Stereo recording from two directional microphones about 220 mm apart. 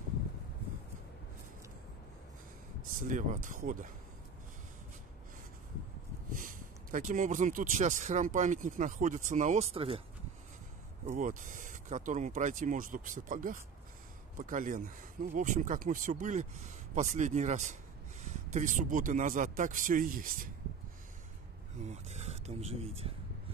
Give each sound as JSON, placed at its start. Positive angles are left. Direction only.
{"t": 3.0, "sound": "speech", "side_deg": -35}
{"t": 6.3, "sound": "speech", "side_deg": -35}
{"t": 11.1, "sound": "speech", "side_deg": -35}
{"t": 21.8, "sound": "speech", "side_deg": -30}